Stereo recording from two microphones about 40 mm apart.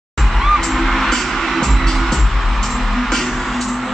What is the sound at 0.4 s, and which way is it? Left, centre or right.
Music, centre.